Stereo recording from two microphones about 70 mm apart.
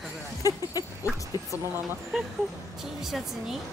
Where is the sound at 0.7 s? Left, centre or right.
Left.